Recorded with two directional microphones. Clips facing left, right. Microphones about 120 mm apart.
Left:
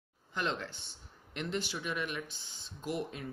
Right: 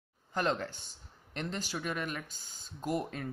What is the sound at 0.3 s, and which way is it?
A man's voice, 40° right (ahead or behind).